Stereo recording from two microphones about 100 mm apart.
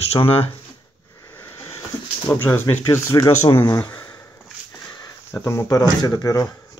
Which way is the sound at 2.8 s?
30° left (ahead or behind).